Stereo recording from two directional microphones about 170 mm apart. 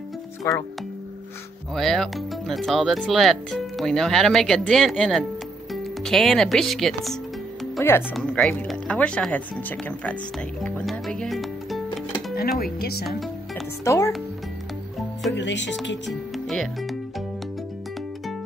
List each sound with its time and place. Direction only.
0.4 s speech: 20° left (ahead or behind)
1.7 s speech: centre (ahead or behind)
12.4 s speech: 65° left (ahead or behind)
13.8 s speech: 20° left (ahead or behind)
15.3 s speech: 90° left
16.1 s speech: centre (ahead or behind)